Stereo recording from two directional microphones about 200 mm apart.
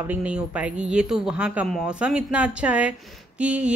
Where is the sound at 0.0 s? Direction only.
10° right (ahead or behind).